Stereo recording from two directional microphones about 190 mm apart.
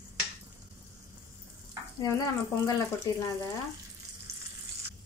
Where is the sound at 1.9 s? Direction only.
15° left (ahead or behind).